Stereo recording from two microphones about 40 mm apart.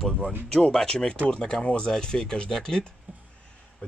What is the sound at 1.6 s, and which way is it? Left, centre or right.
Speech, left.